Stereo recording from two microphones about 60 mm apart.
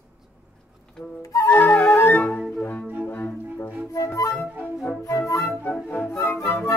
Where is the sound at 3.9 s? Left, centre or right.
Left.